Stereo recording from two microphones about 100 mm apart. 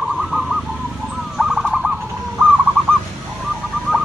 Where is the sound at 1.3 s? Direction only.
5° right (ahead or behind).